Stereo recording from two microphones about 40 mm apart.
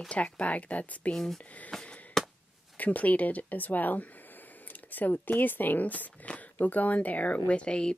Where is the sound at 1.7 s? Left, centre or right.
Centre.